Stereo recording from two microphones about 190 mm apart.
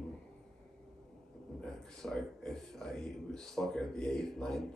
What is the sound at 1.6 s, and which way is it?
A man's voice, 5° left (ahead or behind).